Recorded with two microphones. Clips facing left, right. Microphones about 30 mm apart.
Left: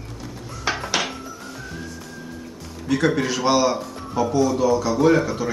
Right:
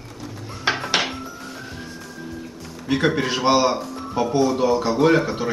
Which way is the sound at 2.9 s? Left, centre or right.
Right.